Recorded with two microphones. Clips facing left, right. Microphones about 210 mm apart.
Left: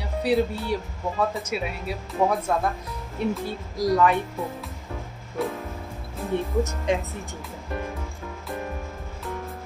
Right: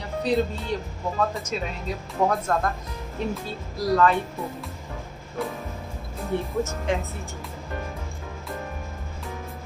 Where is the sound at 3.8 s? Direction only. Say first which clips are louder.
Even; 15° left (ahead or behind).